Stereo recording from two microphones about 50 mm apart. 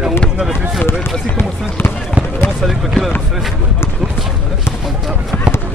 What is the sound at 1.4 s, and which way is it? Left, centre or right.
Speech, left.